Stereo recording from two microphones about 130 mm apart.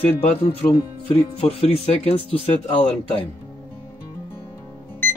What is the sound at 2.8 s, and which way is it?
Speech, 15° left (ahead or behind).